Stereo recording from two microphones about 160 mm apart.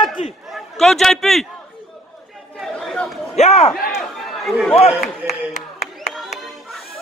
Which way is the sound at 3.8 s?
Centre (ahead or behind).